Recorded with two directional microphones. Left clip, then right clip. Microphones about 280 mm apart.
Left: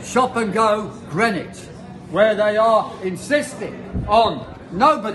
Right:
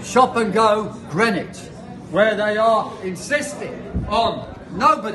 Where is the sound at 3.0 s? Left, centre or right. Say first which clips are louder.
Left 2 dB; left.